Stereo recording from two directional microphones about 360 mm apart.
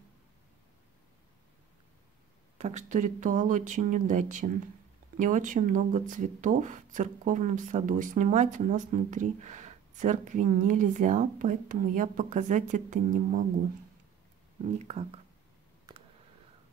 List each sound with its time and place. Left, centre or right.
2.6 s speech: centre
14.8 s speech: centre
15.9 s a sound: centre